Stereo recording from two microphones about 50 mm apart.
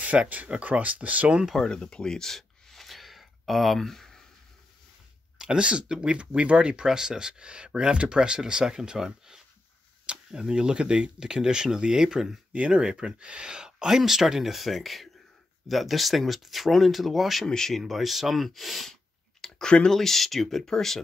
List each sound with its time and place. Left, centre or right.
0.3 s speech: right
1.6 s a sound: centre
5.4 s speech: centre
12.5 s speech: right; by 18.9 s centre
19.7 s speech: centre
20.0 s speech: centre